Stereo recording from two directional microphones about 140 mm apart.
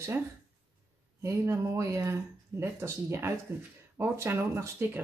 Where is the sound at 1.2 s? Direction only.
20° right (ahead or behind).